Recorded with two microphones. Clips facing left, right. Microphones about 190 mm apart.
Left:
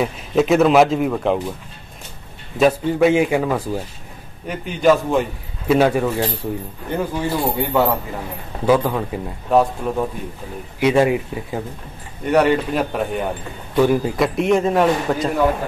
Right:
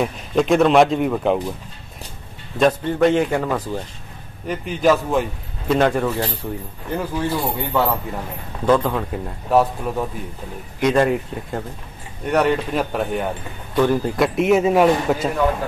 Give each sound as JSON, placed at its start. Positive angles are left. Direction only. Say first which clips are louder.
{"t": 0.0, "sound": "a man's voice", "louder": "left 1 dB", "side_deg": 5}
{"t": 2.5, "sound": "a man's voice", "louder": "left 2 dB", "side_deg": 5}
{"t": 4.5, "sound": "a man's voice", "louder": "left 2 dB", "side_deg": 0}